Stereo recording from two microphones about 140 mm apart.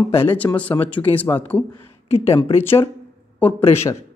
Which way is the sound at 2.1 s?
45° left (ahead or behind).